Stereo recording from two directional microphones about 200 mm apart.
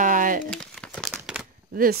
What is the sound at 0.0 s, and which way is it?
Crumpling, 40° right (ahead or behind).